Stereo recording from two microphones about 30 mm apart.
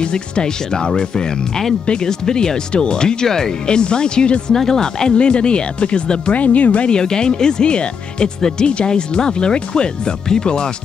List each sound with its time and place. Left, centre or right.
0.0 s speech: left
3.6 s speech: left
4.6 s speech: centre
5.1 s speech: left
6.3 s speech: left
7.1 s speech: left
8.4 s speech: left
8.6 s speech: left